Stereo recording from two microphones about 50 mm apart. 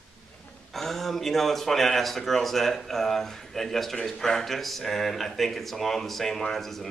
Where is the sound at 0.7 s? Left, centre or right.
Centre.